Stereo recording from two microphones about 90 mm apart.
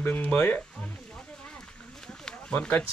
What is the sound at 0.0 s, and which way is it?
Speech, 15° left (ahead or behind).